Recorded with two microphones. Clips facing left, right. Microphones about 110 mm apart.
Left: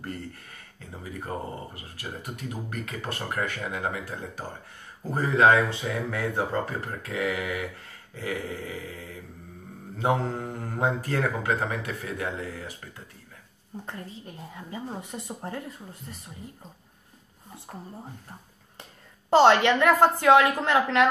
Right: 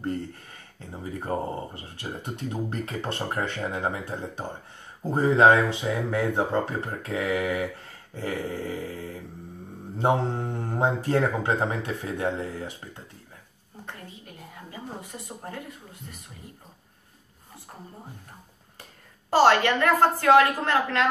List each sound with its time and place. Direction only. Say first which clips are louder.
0.7 s speech: right 3 dB; 30° right (ahead or behind)
8.2 s dog: right 2 dB; 35° right (ahead or behind)
9.9 s speech: right 2 dB; 30° right (ahead or behind)
13.8 s a woman's voice: left 1 dB; 30° left (ahead or behind)
19.3 s a woman's voice: left 1 dB; 20° left (ahead or behind)